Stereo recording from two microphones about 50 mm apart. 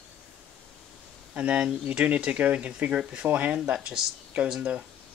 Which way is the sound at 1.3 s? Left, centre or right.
Right.